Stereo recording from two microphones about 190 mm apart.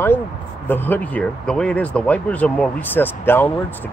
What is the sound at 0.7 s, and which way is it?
Speech, 10° left (ahead or behind).